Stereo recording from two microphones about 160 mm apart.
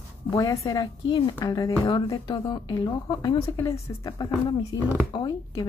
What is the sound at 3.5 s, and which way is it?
Speech, 20° left (ahead or behind).